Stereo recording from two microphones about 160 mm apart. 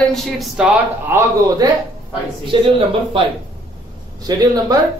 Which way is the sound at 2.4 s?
35° right (ahead or behind).